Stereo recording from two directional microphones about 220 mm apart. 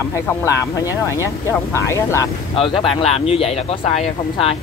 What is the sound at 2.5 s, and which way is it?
Speech, 25° left (ahead or behind).